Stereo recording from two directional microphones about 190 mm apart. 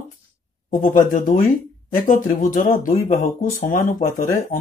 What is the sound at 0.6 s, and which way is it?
Speech, 45° left (ahead or behind).